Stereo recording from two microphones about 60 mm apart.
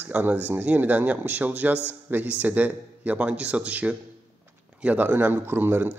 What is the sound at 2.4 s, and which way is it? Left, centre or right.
Speech, right.